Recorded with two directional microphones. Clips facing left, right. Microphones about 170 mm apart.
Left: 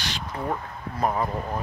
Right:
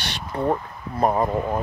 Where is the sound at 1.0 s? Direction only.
35° right (ahead or behind).